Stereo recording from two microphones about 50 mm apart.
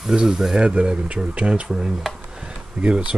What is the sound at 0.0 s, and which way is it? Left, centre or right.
Speech, centre.